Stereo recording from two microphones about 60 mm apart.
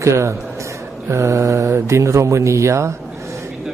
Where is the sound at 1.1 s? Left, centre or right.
Right.